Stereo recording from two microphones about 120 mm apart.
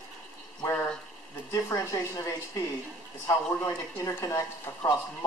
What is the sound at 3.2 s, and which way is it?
Speech, 20° left (ahead or behind).